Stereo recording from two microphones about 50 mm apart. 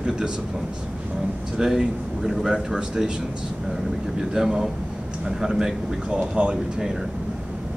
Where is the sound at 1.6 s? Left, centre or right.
Centre.